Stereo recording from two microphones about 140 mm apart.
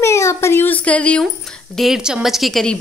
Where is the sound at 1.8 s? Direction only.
Centre (ahead or behind).